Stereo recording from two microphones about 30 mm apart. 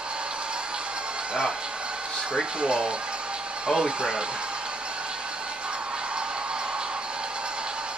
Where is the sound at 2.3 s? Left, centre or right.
Right.